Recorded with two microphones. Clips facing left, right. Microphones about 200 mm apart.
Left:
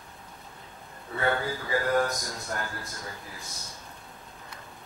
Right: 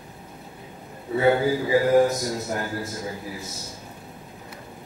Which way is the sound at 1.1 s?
15° right (ahead or behind).